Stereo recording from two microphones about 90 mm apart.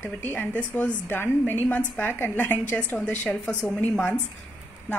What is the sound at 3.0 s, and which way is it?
Speech, 10° left (ahead or behind).